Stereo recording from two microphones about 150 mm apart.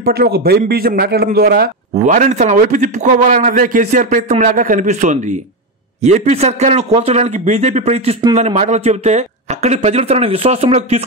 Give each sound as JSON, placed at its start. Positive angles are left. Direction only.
{"t": 0.0, "sound": "a man's voice", "side_deg": -90}
{"t": 2.0, "sound": "a man's voice", "side_deg": -55}